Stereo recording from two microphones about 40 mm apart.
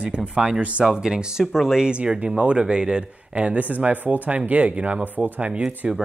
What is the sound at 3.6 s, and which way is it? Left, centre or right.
Speech, right.